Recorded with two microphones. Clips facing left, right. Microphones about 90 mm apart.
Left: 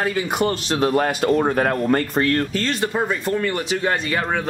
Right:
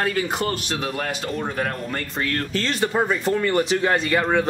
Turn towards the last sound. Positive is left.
turn(degrees=0)  # may be behind; listen again after turning